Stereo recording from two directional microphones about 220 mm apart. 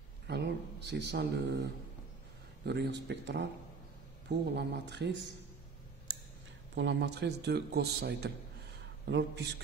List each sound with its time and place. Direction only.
0.3 s a man's voice: 50° right (ahead or behind)
2.6 s a man's voice: 50° right (ahead or behind)
6.7 s a man's voice: 55° right (ahead or behind)
8.7 s a sound: 50° right (ahead or behind)